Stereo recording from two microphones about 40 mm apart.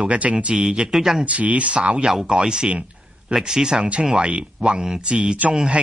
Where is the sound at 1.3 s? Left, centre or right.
Right.